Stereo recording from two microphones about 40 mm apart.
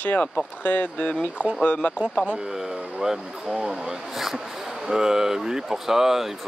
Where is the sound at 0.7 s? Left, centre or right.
Left.